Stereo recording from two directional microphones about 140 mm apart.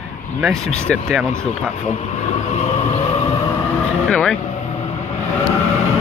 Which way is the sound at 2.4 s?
55° left (ahead or behind).